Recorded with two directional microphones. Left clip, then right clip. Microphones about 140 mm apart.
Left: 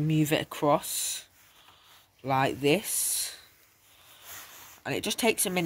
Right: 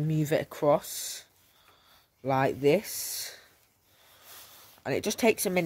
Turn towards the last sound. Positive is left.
turn(degrees=-70)  # may be behind; listen again after turning